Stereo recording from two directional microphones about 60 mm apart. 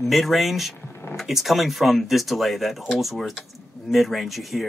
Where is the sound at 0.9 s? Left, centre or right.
Left.